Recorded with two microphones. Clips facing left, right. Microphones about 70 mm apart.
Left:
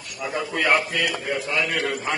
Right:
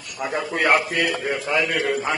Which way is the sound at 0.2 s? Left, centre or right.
Right.